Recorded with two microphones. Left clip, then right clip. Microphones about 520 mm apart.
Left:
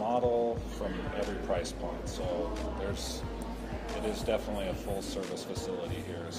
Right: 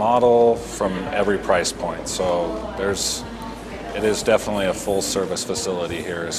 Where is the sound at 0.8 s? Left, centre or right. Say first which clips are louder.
Right 13 dB; right.